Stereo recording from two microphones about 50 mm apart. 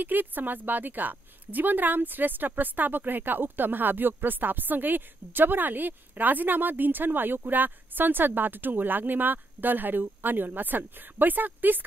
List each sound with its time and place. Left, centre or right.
0.0 s speech: right